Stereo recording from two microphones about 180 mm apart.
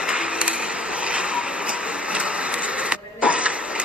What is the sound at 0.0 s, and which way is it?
Vehicle, 5° right (ahead or behind).